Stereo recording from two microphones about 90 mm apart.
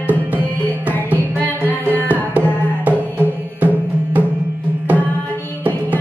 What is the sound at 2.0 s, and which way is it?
Music, 20° right (ahead or behind).